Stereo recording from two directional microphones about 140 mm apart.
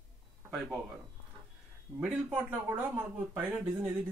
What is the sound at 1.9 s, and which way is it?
Speech, 5° right (ahead or behind).